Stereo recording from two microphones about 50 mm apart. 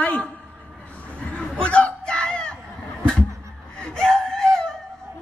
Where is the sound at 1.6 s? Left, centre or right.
Left.